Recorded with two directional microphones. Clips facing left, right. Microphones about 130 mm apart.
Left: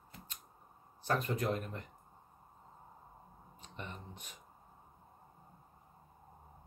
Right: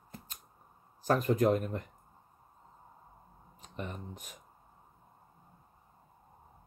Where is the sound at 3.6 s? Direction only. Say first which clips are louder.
Right 6 dB; 45° right (ahead or behind).